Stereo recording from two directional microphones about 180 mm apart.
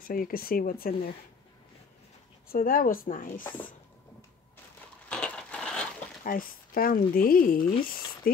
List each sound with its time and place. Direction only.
0.0 s speech: 50° left (ahead or behind)
2.5 s speech: 50° left (ahead or behind)
5.1 s a sound: 5° left (ahead or behind)
6.2 s speech: 50° left (ahead or behind)